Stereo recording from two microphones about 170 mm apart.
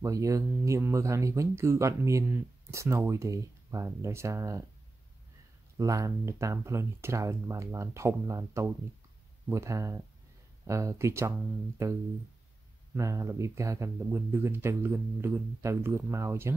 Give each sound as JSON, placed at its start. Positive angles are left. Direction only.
{"t": 0.0, "sound": "speech", "side_deg": -20}
{"t": 5.8, "sound": "speech", "side_deg": -20}